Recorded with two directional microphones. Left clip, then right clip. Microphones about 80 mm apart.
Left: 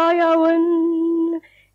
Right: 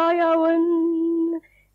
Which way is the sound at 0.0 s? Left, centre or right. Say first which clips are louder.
Left 3 dB; right.